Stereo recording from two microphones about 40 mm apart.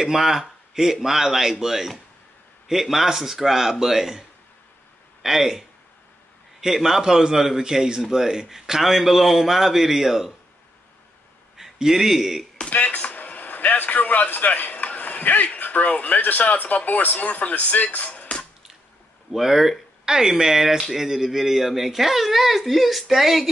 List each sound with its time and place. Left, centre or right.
0.0 s a man's voice: centre
5.2 s a man's voice: centre
11.5 s a man's voice: centre
12.6 s speech: left
19.3 s a man's voice: centre